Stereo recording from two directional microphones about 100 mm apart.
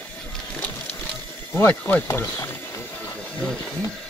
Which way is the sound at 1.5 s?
20° left (ahead or behind).